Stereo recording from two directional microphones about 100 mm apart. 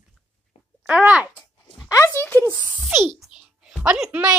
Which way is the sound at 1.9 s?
25° left (ahead or behind).